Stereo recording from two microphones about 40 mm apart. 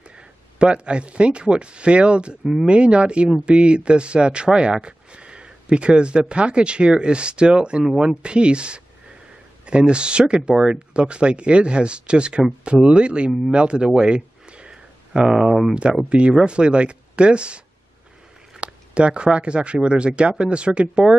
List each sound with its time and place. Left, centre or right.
0.1 s speech: right
13.5 s a sound: right
15.2 s speech: centre
16.1 s speech: right
18.6 s speech: right